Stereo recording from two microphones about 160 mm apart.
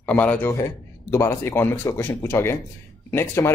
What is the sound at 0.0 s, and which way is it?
Speech, 10° left (ahead or behind).